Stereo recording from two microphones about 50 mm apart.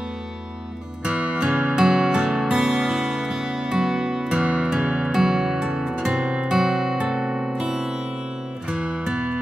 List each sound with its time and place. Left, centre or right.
1.0 s music: right